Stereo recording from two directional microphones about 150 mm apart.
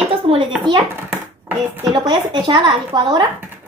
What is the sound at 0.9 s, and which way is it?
Speech, 15° right (ahead or behind).